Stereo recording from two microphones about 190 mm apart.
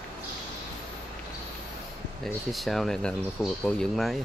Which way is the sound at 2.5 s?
Centre (ahead or behind).